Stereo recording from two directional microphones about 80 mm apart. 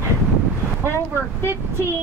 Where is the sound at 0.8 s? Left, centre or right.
Left.